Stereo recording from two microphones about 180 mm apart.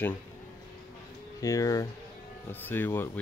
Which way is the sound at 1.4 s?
20° left (ahead or behind).